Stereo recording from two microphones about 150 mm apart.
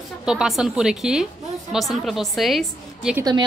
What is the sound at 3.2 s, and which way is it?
Speech, 25° right (ahead or behind).